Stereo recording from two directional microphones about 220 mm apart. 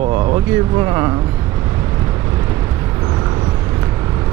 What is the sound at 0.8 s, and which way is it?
Speech, 15° right (ahead or behind).